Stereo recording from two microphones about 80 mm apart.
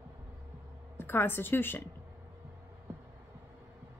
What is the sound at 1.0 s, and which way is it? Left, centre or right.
Speech, left.